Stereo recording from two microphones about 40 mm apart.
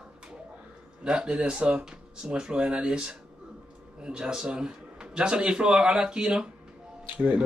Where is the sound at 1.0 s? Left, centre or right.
Right.